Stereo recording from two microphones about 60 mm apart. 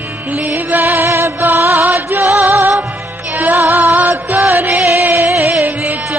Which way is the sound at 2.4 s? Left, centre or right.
Right.